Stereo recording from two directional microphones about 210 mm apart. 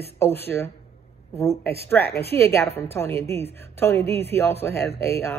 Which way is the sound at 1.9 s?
10° left (ahead or behind).